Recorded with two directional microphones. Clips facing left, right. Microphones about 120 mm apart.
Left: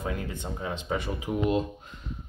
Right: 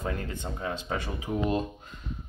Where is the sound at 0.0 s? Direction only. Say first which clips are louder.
Even; 15° left (ahead or behind).